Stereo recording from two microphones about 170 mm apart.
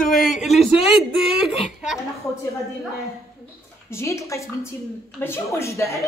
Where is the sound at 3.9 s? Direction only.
15° left (ahead or behind).